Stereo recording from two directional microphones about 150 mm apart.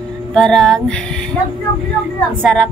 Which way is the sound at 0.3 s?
5° left (ahead or behind).